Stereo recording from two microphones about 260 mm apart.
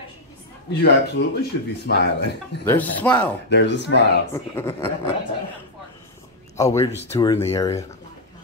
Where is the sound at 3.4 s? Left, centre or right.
Left.